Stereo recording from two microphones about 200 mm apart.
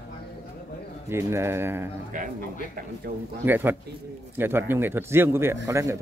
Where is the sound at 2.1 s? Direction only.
40° right (ahead or behind).